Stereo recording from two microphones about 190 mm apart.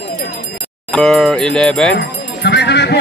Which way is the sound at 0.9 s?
Centre (ahead or behind).